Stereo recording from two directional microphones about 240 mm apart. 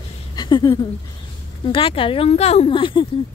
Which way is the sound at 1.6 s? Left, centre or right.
Left.